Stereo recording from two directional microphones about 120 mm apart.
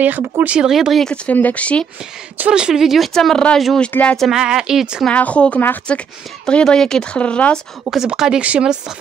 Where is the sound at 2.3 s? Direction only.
10° right (ahead or behind); by 4.3 s 10° left (ahead or behind).